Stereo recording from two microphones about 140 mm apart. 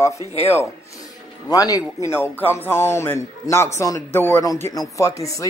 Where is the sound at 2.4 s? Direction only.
15° left (ahead or behind).